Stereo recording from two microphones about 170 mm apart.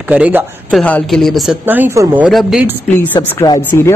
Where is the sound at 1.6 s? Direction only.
10° right (ahead or behind).